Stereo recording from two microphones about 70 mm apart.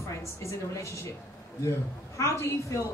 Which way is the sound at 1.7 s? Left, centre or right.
Left.